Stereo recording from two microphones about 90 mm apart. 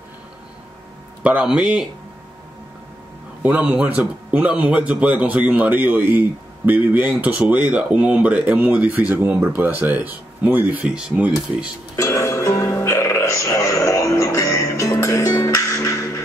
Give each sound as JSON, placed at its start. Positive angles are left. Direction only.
{"t": 1.2, "sound": "speech", "side_deg": -10}
{"t": 3.4, "sound": "speech", "side_deg": -15}
{"t": 12.1, "sound": "music", "side_deg": 35}